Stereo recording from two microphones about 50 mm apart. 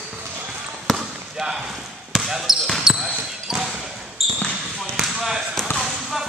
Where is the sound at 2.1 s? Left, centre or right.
Centre.